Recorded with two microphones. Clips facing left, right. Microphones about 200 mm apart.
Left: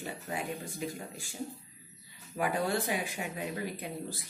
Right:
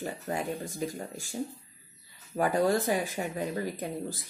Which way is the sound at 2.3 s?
40° right (ahead or behind).